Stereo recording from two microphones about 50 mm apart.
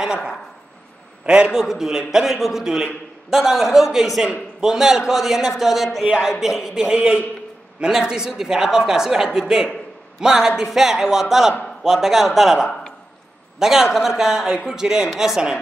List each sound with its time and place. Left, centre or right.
0.0 s speech: centre
1.2 s a man's voice: right
1.5 s a man's voice: centre